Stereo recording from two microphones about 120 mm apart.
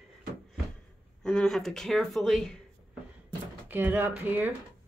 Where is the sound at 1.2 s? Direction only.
5° left (ahead or behind).